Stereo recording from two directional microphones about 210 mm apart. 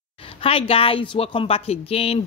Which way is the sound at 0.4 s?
25° left (ahead or behind).